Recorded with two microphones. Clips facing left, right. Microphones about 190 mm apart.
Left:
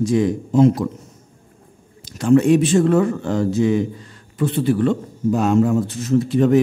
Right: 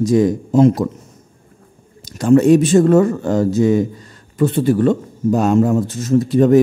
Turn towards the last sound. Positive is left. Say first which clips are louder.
# right 3 dB
turn(degrees=-40)  # may be behind; listen again after turning